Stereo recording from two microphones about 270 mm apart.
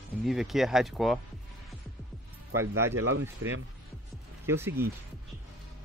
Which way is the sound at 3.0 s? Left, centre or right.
Right.